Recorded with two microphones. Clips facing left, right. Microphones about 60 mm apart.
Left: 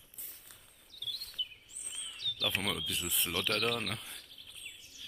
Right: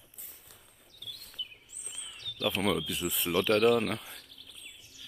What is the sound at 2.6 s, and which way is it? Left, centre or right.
Speech, centre.